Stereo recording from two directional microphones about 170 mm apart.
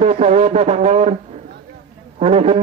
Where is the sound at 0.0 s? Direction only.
40° right (ahead or behind).